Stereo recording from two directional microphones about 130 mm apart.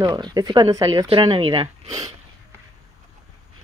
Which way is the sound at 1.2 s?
40° right (ahead or behind).